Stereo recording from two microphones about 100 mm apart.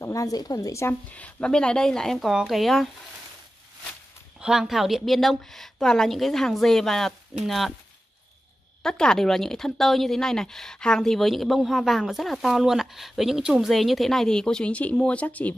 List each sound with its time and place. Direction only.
0.0 s speech: 35° left (ahead or behind)
1.1 s a woman's voice: 10° left (ahead or behind)
4.4 s a woman's voice: 5° right (ahead or behind)
8.8 s a woman's voice: 5° left (ahead or behind)